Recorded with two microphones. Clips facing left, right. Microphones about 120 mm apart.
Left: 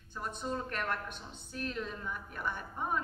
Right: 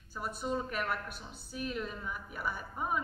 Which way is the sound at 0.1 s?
5° right (ahead or behind).